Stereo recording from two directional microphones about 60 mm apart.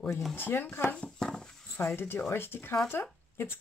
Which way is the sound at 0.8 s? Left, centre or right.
Left.